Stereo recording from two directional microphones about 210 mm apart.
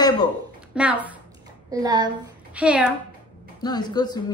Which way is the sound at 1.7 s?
20° right (ahead or behind).